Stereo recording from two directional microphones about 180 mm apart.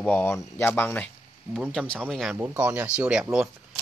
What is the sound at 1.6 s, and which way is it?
Speech, 5° right (ahead or behind).